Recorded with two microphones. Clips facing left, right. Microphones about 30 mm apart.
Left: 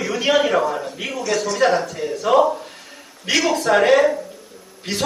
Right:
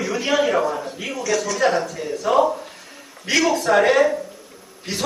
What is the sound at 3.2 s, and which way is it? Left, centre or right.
Speech, left.